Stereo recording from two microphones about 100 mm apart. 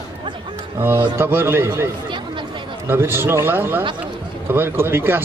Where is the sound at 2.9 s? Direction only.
25° right (ahead or behind).